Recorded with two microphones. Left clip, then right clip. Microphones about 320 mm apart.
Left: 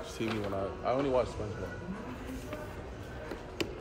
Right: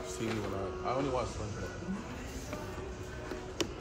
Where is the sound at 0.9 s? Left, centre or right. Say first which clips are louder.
Left 3 dB; left.